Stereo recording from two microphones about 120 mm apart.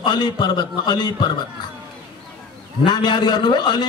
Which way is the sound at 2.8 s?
40° left (ahead or behind).